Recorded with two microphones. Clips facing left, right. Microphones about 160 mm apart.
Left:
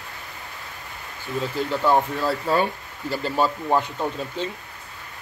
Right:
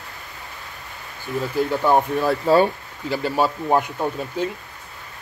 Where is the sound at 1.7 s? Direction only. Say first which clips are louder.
Right 1 dB; 15° right (ahead or behind).